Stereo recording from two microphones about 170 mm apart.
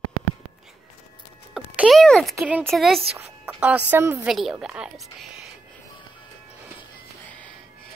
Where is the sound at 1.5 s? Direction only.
Centre (ahead or behind).